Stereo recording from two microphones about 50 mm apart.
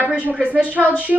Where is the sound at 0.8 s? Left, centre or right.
Centre.